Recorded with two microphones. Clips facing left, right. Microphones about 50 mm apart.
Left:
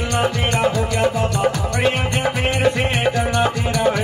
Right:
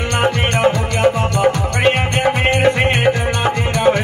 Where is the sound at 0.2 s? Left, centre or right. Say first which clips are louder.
Right 4 dB; right.